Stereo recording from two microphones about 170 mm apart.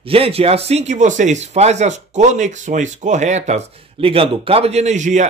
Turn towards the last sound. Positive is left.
turn(degrees=-45)  # may be behind; listen again after turning